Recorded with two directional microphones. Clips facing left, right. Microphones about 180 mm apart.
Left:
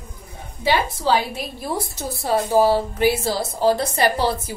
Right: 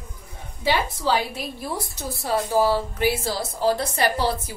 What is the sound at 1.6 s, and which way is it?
A woman's voice, 25° left (ahead or behind).